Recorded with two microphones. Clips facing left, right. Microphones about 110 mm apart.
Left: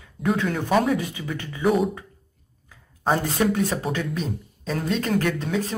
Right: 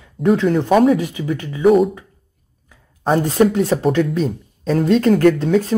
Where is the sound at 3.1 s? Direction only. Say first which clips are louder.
Right 8 dB; 45° right (ahead or behind).